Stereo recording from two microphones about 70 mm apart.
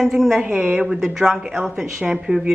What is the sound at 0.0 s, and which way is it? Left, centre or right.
Speech, centre.